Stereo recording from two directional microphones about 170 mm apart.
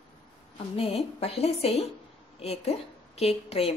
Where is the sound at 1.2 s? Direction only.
35° left (ahead or behind).